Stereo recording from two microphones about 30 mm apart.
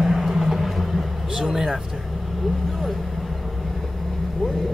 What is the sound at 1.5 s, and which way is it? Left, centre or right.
Vehicle, centre.